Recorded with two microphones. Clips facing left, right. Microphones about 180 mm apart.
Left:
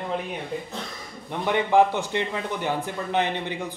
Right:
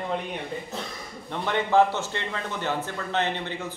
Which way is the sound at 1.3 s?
15° left (ahead or behind).